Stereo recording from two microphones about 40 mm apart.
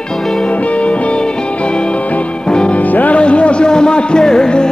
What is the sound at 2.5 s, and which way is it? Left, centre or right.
Music, left.